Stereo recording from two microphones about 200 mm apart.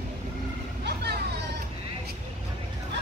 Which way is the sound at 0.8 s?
55° right (ahead or behind).